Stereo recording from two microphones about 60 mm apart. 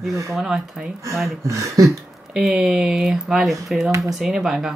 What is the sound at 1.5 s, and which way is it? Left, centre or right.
Speech, right.